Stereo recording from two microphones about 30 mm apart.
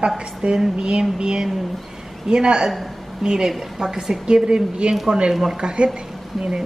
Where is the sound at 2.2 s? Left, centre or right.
Right.